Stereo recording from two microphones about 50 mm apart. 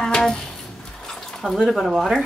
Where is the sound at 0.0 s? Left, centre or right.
Centre.